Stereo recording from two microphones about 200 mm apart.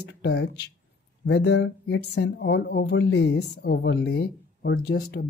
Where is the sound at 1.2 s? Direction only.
60° left (ahead or behind).